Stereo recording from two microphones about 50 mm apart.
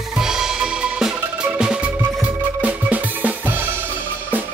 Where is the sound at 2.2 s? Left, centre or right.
Right.